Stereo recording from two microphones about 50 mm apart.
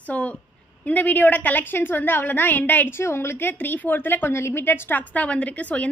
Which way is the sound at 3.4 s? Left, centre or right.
Left.